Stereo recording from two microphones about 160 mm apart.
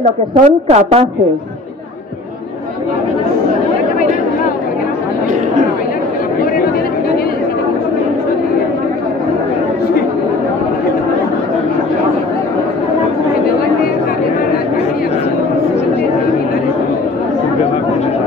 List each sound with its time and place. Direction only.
0.4 s a woman's voice: 45° right (ahead or behind)